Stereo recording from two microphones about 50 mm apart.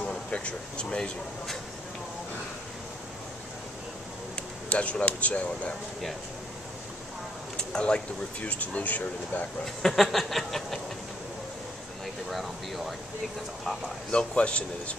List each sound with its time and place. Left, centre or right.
0.0 s speech: left
4.6 s speech: left
7.5 s speech: centre; by 9.5 s left
9.8 s a sound: centre
12.3 s a sound: centre
14.1 s speech: left